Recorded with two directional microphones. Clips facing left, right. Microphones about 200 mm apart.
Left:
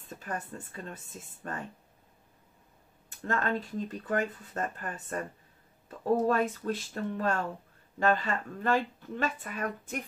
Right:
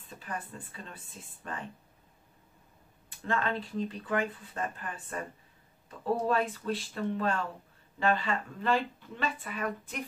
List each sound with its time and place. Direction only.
0.2 s speech: 45° left (ahead or behind)
3.3 s speech: 45° left (ahead or behind)